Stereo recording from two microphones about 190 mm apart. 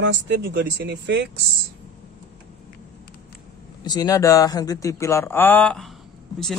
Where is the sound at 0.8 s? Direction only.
65° right (ahead or behind).